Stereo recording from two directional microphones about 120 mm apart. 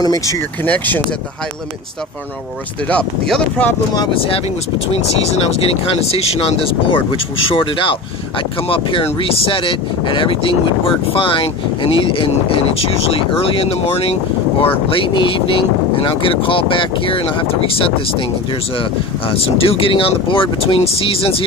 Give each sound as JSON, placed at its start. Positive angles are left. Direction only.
{"t": 0.0, "sound": "speech", "side_deg": 30}
{"t": 0.7, "sound": "speech", "side_deg": 15}
{"t": 2.9, "sound": "speech", "side_deg": 10}
{"t": 4.1, "sound": "speech", "side_deg": 50}